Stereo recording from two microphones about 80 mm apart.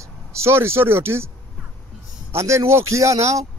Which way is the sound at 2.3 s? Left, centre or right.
Right.